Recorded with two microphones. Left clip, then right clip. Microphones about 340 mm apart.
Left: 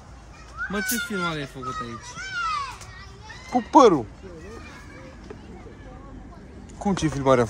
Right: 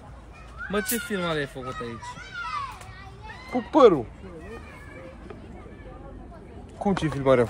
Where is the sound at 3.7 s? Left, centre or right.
Centre.